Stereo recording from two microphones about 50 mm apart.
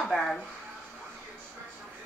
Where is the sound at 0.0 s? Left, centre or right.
Centre.